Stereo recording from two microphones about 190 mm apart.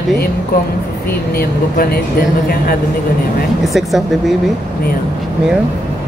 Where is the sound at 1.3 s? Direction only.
50° left (ahead or behind).